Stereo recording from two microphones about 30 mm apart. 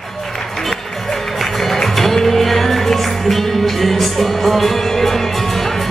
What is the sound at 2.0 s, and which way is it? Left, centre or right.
Music, centre.